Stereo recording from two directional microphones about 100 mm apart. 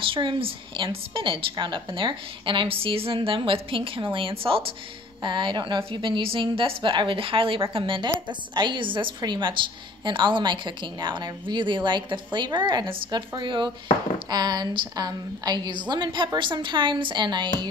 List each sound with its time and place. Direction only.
0.0 s a woman's voice: 55° right (ahead or behind)
5.2 s a woman's voice: 50° right (ahead or behind)